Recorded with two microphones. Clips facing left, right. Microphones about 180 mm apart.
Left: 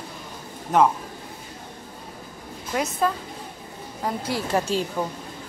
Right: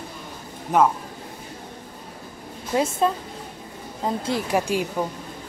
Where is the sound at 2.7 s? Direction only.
25° right (ahead or behind).